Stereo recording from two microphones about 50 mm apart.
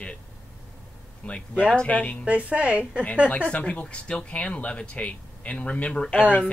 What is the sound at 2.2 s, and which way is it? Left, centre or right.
Speech, right.